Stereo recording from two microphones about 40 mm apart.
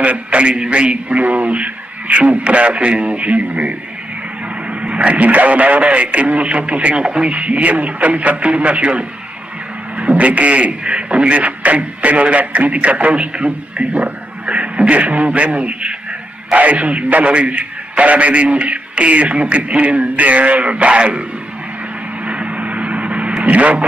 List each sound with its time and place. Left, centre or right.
0.0 s a man's voice: right
22.2 s vehicle: right